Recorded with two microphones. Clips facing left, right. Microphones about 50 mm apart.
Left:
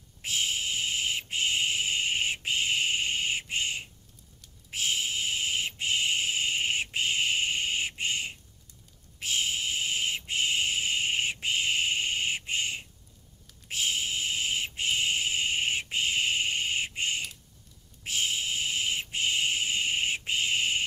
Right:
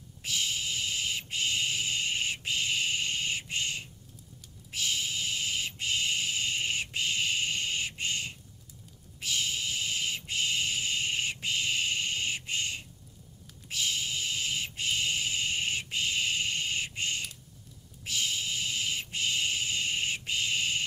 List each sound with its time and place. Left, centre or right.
0.2 s owl: left
4.6 s owl: left
9.2 s a sound: left
16.6 s bird: left
18.0 s owl: left